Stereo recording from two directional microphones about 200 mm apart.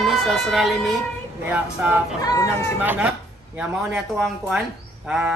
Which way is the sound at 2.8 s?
10° right (ahead or behind).